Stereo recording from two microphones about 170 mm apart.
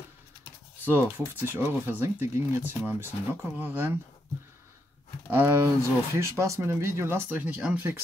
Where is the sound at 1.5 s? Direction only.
15° right (ahead or behind).